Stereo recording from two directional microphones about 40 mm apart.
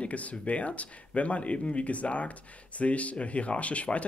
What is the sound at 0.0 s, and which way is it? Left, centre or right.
Speech, left.